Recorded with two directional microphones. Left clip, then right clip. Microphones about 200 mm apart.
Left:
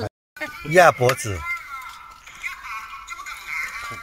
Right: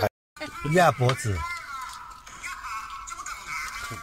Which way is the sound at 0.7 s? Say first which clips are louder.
Left 7 dB; 25° left (ahead or behind).